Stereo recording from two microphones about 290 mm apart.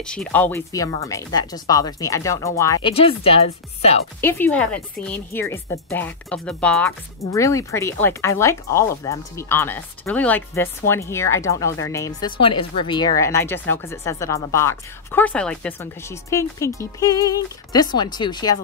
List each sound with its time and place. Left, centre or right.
0.0 s speech: centre; by 4.0 s left
4.2 s speech: centre